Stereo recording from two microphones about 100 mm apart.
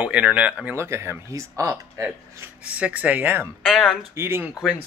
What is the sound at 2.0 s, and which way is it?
Speech, 15° right (ahead or behind).